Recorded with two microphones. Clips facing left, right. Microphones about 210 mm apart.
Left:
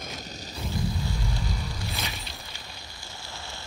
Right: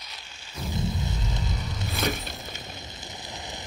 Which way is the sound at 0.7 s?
20° right (ahead or behind).